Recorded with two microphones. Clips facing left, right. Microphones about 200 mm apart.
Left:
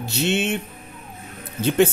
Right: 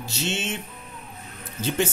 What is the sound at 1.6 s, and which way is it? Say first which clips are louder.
Speech: left 7 dB; 60° left (ahead or behind).